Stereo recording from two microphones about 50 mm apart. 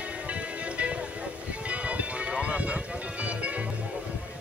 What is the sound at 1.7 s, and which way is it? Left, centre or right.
Music, right.